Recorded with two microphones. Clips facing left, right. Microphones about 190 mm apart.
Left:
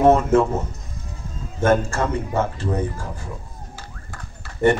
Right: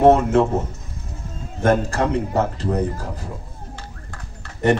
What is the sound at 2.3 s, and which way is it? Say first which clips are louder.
Speech: right 2 dB; 35° right (ahead or behind).